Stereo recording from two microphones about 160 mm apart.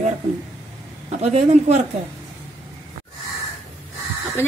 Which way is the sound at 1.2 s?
40° right (ahead or behind).